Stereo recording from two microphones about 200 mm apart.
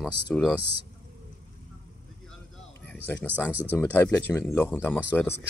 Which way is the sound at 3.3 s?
10° right (ahead or behind).